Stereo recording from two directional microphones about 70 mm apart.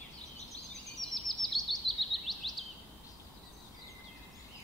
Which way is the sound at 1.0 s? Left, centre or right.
Centre.